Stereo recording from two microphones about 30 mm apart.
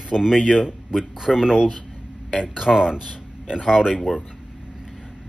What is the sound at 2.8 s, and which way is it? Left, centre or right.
Speech, right.